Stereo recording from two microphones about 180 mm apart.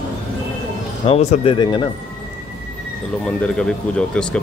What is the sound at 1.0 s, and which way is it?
Speech, 35° left (ahead or behind).